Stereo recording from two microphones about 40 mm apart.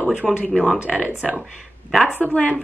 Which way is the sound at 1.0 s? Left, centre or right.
Right.